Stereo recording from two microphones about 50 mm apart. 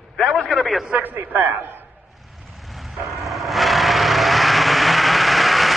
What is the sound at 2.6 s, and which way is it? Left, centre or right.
Vehicle, centre.